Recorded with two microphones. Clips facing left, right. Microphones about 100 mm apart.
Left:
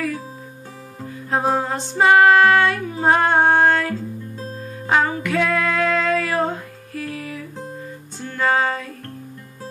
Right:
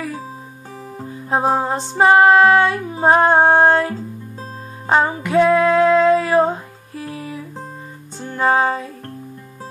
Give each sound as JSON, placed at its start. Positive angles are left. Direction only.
{"t": 1.3, "sound": "female singing", "side_deg": -25}
{"t": 8.2, "sound": "music", "side_deg": -25}